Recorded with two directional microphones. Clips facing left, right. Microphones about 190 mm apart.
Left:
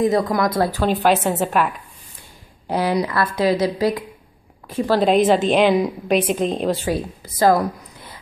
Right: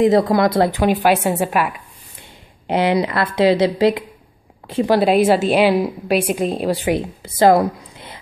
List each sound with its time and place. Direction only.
0.0 s a woman's voice: 30° right (ahead or behind)
0.8 s a woman's voice: 10° right (ahead or behind)
2.7 s a woman's voice: 25° right (ahead or behind)
4.8 s a woman's voice: 10° right (ahead or behind)